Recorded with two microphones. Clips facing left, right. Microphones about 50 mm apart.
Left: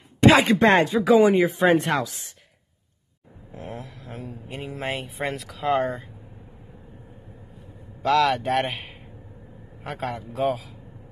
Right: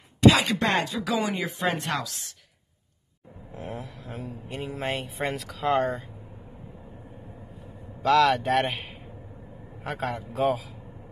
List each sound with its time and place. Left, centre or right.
0.2 s speech: left
3.5 s speech: centre
8.0 s speech: centre